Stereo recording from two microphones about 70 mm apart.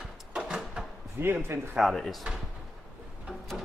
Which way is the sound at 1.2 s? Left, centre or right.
Right.